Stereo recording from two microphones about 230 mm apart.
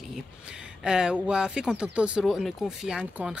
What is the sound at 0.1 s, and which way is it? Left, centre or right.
Speech, centre.